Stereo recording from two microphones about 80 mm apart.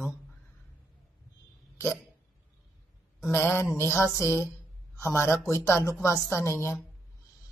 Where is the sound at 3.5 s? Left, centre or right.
Left.